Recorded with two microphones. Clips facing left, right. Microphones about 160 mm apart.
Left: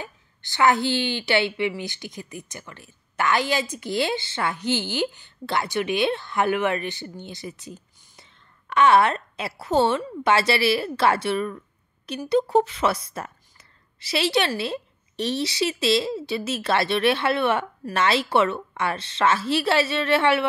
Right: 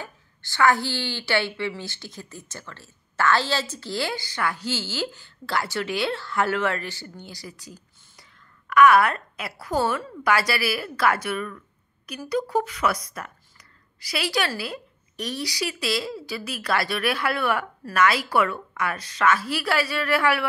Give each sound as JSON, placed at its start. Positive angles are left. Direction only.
{"t": 0.0, "sound": "a woman's voice", "side_deg": 20}